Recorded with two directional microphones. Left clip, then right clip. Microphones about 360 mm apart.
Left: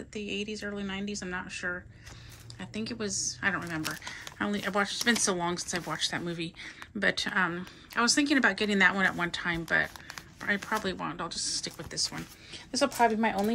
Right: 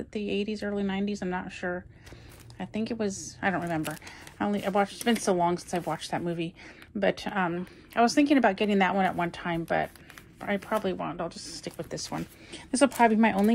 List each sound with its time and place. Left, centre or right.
0.1 s speech: centre
12.7 s a woman's voice: right